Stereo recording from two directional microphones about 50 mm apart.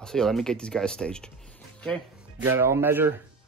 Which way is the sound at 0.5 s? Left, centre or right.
Centre.